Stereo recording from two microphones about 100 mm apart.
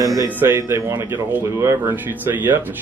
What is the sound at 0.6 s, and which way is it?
Speech, 30° right (ahead or behind).